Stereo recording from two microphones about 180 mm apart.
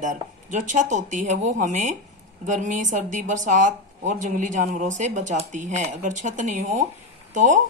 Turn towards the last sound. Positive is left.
turn(degrees=-45)  # may be behind; listen again after turning